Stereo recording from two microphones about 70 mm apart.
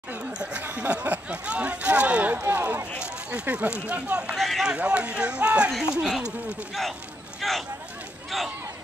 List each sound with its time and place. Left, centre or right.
0.4 s speech: centre
2.4 s speech: right
3.0 s speech: centre
4.4 s speech: centre
4.6 s speech: centre
5.7 s speech: centre
7.4 s speech: centre